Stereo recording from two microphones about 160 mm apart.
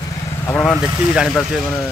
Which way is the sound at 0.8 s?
5° right (ahead or behind).